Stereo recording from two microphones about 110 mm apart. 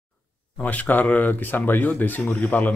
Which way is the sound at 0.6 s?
15° left (ahead or behind).